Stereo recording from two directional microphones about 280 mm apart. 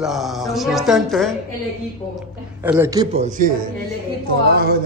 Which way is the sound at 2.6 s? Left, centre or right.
Centre.